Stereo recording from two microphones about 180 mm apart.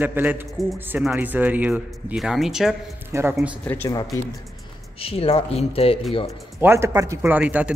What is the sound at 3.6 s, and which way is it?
Speech, 10° left (ahead or behind).